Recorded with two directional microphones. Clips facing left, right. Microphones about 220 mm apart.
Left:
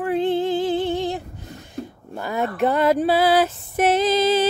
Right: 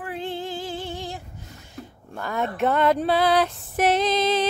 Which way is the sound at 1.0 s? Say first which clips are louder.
Left 9 dB; 20° left (ahead or behind).